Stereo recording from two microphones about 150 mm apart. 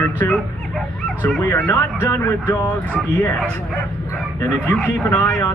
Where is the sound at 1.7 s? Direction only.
15° left (ahead or behind).